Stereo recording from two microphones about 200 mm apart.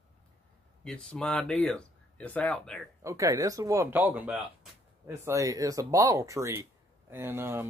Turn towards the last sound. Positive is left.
turn(degrees=-15)  # may be behind; listen again after turning